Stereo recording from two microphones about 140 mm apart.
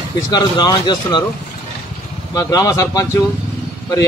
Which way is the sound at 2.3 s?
25° left (ahead or behind).